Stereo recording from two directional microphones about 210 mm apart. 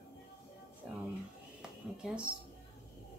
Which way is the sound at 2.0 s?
5° right (ahead or behind).